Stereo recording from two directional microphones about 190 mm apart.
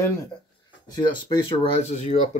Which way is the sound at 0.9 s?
25° left (ahead or behind).